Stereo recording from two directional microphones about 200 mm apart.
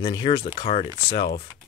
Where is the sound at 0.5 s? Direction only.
35° left (ahead or behind).